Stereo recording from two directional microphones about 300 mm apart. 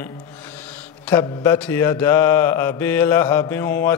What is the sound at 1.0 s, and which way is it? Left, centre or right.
Mantra, centre.